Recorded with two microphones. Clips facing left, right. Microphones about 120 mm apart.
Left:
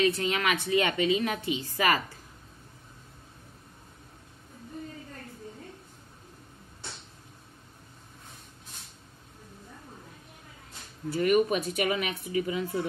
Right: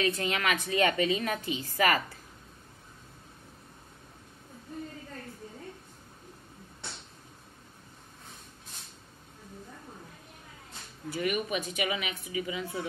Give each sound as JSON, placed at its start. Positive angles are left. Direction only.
{"t": 0.0, "sound": "a woman's voice", "side_deg": 20}
{"t": 11.1, "sound": "a woman's voice", "side_deg": 40}